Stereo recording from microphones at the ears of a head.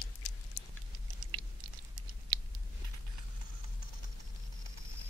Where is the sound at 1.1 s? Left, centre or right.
Right.